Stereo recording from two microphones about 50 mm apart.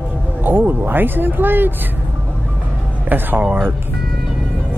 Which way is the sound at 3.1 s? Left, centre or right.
Right.